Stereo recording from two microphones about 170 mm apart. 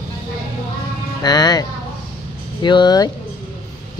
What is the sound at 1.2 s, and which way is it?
Speech, 25° left (ahead or behind).